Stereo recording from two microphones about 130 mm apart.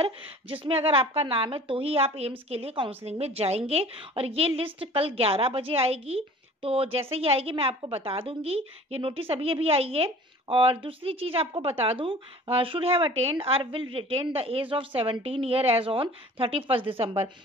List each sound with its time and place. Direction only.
0.0 s a woman's voice: 45° right (ahead or behind)